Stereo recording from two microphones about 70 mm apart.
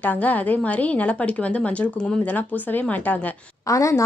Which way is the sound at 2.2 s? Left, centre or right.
Left.